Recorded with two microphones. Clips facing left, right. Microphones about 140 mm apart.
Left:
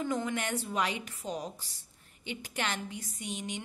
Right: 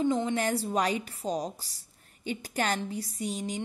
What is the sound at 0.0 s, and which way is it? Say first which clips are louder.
A woman's voice: right 6 dB; 25° right (ahead or behind).